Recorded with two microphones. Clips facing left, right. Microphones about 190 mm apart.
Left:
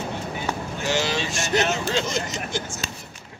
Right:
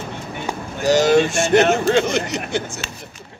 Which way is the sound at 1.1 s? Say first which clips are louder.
Right 10 dB; 55° right (ahead or behind).